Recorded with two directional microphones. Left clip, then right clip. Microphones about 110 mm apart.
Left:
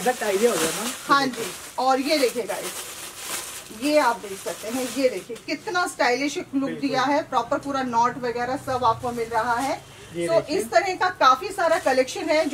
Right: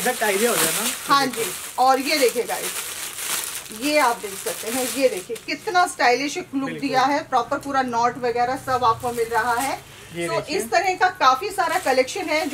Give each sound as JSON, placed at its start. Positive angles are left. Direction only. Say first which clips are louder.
{"t": 0.0, "sound": "speech", "louder": "right 1 dB", "side_deg": -15}
{"t": 1.0, "sound": "a woman's voice", "louder": "right 1 dB", "side_deg": 0}
{"t": 3.8, "sound": "a woman's voice", "louder": "right 1 dB", "side_deg": 0}